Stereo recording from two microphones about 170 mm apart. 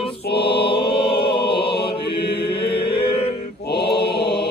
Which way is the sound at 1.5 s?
75° left (ahead or behind).